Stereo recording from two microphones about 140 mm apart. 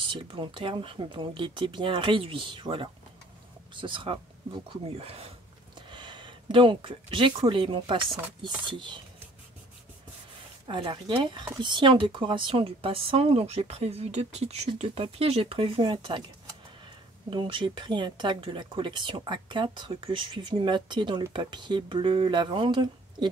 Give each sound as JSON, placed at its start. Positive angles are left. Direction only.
{"t": 0.0, "sound": "speech", "side_deg": -40}
{"t": 5.8, "sound": "a sound", "side_deg": -35}
{"t": 7.4, "sound": "speech", "side_deg": -40}
{"t": 10.7, "sound": "speech", "side_deg": -35}
{"t": 17.3, "sound": "speech", "side_deg": -35}